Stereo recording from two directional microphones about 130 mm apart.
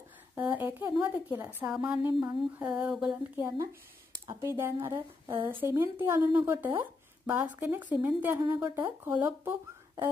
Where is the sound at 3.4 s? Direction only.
25° right (ahead or behind).